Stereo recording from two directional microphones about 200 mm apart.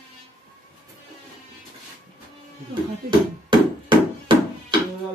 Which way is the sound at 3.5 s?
25° right (ahead or behind).